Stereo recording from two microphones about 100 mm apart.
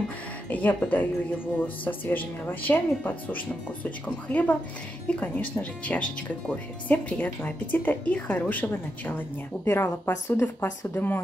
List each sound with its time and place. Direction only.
0.5 s a woman's voice: 15° left (ahead or behind)